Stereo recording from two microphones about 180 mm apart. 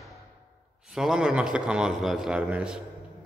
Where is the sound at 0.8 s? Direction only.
5° right (ahead or behind).